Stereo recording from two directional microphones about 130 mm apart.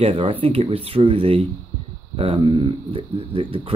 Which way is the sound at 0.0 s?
45° right (ahead or behind).